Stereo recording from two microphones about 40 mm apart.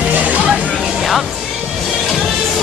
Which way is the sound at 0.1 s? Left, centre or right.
Right.